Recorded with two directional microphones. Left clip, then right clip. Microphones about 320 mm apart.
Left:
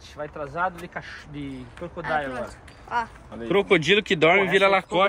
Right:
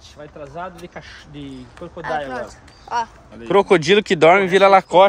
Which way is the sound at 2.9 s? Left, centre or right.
Right.